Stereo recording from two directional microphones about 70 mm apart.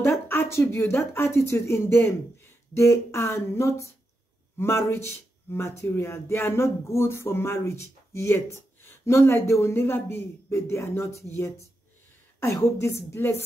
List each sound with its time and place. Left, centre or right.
0.1 s speech: left
2.7 s a sound: left
4.6 s speech: left
12.5 s speech: left